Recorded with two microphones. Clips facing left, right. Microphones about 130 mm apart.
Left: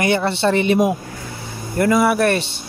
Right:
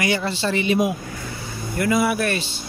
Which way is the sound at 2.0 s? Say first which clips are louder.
Left 6 dB; 70° left (ahead or behind).